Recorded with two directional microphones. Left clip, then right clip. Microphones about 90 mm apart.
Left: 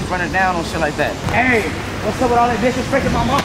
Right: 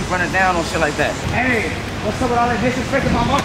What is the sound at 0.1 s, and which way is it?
A man's voice, centre (ahead or behind).